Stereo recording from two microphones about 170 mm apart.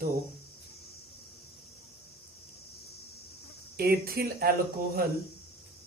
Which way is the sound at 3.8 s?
60° right (ahead or behind).